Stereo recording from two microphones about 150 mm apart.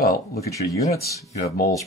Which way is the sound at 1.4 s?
90° left.